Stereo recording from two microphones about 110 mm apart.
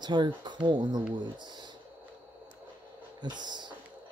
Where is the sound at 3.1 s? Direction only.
40° right (ahead or behind).